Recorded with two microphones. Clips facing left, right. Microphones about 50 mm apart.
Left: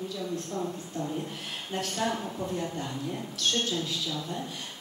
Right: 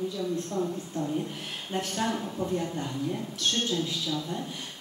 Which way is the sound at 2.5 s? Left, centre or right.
Centre.